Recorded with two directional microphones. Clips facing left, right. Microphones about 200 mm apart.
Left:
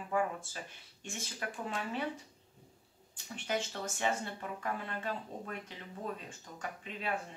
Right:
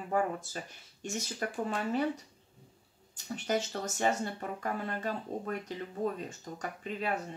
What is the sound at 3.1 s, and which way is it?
Speech, 40° right (ahead or behind).